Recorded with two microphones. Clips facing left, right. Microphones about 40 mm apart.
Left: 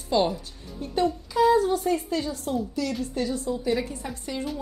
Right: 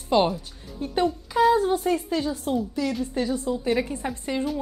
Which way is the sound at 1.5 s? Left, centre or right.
Right.